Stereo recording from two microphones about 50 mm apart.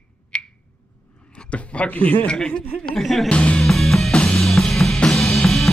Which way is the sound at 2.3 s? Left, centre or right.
Centre.